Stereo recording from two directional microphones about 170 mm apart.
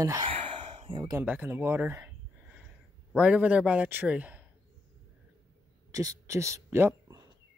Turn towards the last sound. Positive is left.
turn(degrees=-15)  # may be behind; listen again after turning